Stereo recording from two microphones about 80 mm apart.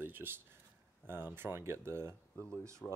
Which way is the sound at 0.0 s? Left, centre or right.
Right.